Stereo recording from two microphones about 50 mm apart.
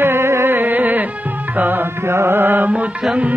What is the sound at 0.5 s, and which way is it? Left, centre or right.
Music, right.